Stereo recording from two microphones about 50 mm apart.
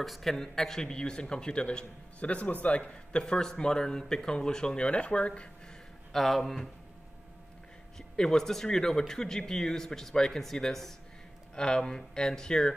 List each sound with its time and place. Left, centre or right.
0.0 s a man's voice: centre; by 5.5 s left
6.1 s speech: centre
8.2 s a man's voice: centre